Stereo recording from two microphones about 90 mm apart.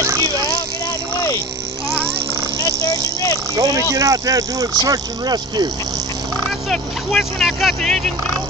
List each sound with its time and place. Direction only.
0.0 s vehicle: 30° right (ahead or behind)
3.5 s a sound: 40° right (ahead or behind)
3.9 s speech: 40° right (ahead or behind)
6.7 s speech: 5° left (ahead or behind)